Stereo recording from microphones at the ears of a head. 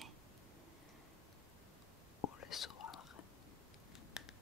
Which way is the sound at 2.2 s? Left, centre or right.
Left.